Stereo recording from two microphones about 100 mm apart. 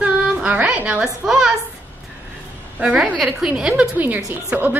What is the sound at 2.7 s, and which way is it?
A woman's voice, 10° right (ahead or behind).